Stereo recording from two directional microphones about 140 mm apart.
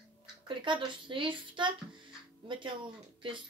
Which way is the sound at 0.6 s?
35° right (ahead or behind).